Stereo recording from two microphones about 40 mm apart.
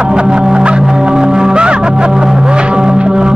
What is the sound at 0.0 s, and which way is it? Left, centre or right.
Music, right.